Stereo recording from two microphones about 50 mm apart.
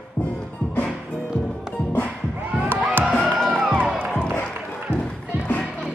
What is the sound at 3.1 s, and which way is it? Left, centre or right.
Music, left.